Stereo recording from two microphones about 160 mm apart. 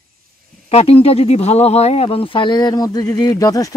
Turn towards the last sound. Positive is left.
turn(degrees=20)  # may be behind; listen again after turning